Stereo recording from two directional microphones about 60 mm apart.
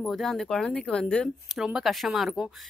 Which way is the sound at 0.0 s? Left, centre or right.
Centre.